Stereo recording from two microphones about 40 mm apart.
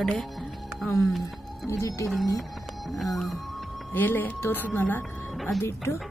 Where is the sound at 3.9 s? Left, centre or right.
Left.